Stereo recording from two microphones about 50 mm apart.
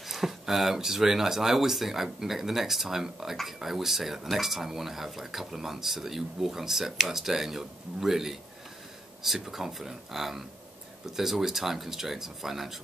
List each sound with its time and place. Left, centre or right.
0.0 s speech: centre